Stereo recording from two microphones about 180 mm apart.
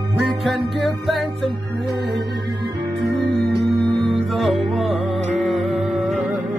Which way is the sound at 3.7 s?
Centre (ahead or behind).